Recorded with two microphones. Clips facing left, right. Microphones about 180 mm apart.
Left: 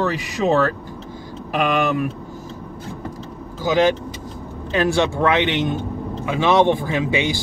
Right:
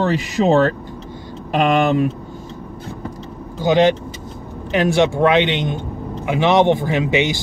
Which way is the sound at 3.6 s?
25° right (ahead or behind).